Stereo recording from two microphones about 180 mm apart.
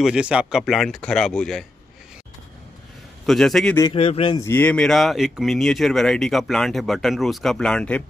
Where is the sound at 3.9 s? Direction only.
30° left (ahead or behind).